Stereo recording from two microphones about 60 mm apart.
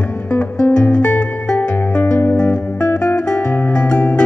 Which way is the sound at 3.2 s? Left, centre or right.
Centre.